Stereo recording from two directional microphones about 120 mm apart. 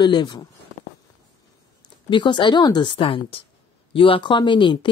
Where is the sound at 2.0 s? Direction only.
40° left (ahead or behind).